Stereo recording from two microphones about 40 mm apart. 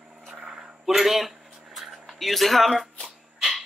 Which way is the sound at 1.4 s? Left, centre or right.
Centre.